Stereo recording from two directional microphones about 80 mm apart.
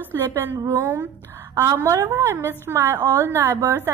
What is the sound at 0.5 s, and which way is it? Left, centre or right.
Speech, right.